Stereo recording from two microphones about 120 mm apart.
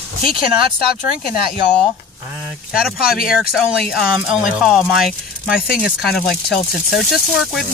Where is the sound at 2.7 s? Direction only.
Centre (ahead or behind).